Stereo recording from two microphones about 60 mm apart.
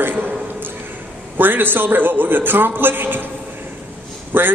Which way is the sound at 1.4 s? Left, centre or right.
Right.